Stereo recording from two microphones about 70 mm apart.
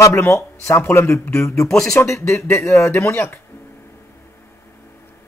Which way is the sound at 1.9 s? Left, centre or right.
Left.